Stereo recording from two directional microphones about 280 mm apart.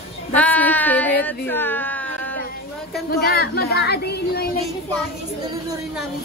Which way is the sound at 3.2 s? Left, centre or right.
Left.